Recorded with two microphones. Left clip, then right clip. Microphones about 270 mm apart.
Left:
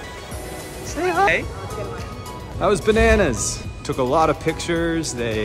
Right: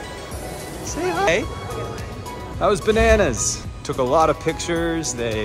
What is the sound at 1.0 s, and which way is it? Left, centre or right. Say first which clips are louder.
Speech: left 2 dB; centre.